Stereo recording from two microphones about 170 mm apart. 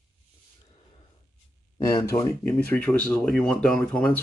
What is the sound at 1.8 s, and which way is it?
Speech, 20° left (ahead or behind).